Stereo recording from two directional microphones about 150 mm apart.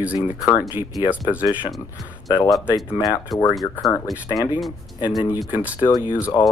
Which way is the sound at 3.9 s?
20° left (ahead or behind).